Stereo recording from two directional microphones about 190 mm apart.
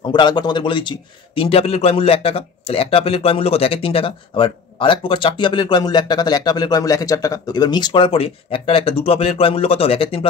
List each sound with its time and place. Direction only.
0.1 s a man's voice: 25° left (ahead or behind)